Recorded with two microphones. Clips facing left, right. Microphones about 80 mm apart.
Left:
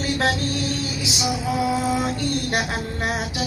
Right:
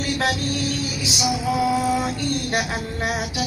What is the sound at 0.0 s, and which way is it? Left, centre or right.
Music, left.